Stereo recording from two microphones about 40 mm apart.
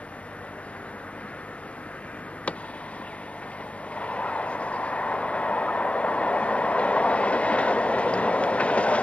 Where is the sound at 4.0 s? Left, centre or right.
Left.